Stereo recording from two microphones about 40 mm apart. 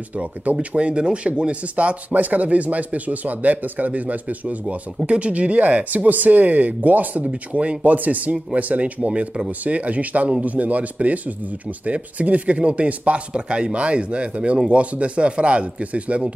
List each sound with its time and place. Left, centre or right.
0.2 s speech: right
7.2 s speech: right
9.0 s speech: right
13.3 s speech: right